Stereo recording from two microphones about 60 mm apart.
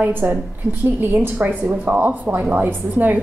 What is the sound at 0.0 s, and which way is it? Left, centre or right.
A woman's voice, right.